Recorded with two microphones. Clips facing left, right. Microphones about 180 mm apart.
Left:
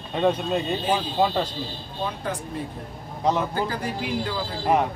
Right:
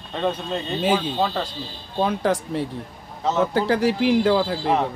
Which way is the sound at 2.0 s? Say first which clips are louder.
Right 8 dB; 80° right.